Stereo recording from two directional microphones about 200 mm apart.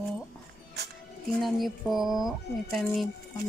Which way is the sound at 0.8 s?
55° right (ahead or behind).